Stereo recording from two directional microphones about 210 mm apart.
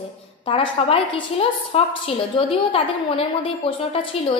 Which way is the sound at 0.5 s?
25° left (ahead or behind).